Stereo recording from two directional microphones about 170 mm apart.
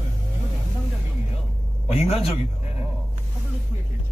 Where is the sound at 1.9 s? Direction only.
35° left (ahead or behind).